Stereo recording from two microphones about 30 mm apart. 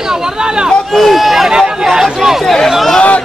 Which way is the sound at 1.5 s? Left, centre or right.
Right.